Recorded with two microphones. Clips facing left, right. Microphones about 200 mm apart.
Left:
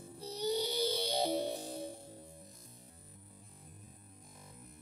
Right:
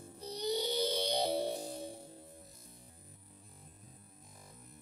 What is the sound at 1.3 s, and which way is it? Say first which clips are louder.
Music: right 1 dB; centre (ahead or behind).